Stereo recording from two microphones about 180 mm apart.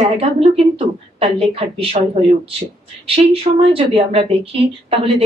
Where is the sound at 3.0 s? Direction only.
30° right (ahead or behind).